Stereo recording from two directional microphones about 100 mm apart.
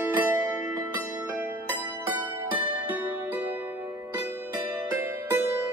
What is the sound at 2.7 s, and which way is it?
Music, 15° right (ahead or behind).